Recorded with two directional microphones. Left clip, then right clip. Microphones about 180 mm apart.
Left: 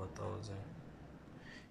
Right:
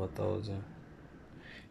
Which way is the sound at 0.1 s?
20° right (ahead or behind).